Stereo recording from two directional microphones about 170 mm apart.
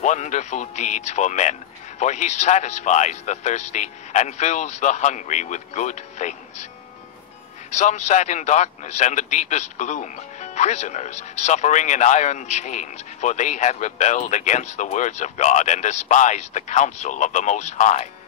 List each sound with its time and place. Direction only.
0.0 s a man's voice: 45° left (ahead or behind)
7.7 s a man's voice: 45° left (ahead or behind)